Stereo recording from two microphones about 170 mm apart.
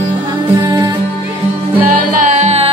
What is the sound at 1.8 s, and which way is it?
Music, 50° right (ahead or behind).